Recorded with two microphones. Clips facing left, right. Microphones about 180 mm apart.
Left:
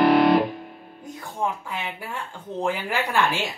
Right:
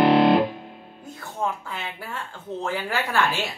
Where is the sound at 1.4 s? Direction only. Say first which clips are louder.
Left 1 dB; 15° left (ahead or behind).